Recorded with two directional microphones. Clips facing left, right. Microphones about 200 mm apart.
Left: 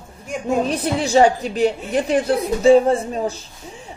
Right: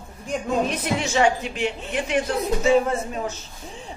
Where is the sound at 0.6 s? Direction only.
35° left (ahead or behind).